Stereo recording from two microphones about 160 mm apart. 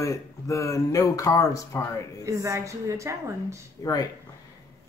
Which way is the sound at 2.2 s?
20° right (ahead or behind).